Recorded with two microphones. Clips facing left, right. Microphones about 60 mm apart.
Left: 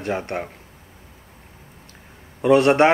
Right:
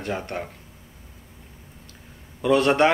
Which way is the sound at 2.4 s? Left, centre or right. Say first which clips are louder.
Left 4 dB; left.